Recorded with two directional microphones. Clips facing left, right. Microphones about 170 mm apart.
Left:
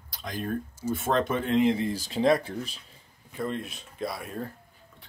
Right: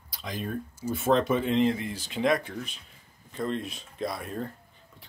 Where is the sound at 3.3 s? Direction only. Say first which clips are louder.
Right 1 dB; 5° left (ahead or behind).